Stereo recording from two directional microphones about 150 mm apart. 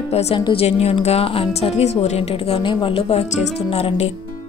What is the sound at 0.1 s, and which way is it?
A woman's voice, 45° left (ahead or behind).